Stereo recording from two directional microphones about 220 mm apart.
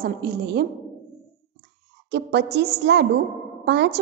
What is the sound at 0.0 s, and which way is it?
Speech, 45° right (ahead or behind).